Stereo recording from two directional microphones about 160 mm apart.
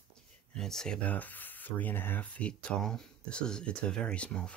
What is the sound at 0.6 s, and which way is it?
Speech, 5° left (ahead or behind).